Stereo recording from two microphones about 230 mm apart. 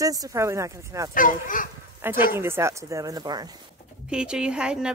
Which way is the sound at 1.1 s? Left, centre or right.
Left.